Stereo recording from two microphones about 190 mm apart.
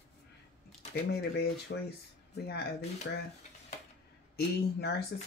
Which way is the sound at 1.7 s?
65° left (ahead or behind).